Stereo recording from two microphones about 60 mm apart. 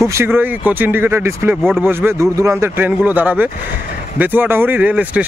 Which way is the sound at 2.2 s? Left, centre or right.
Right.